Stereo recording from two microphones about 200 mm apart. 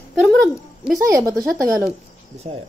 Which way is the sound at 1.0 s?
15° right (ahead or behind).